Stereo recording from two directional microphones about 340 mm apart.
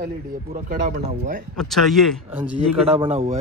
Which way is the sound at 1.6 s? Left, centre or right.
Centre.